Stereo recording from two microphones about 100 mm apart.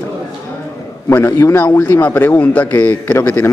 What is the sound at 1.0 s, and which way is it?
A man's voice, 25° left (ahead or behind).